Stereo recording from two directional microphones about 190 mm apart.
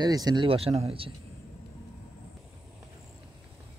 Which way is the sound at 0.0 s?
20° right (ahead or behind).